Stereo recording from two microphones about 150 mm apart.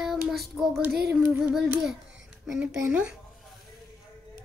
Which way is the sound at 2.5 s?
10° right (ahead or behind).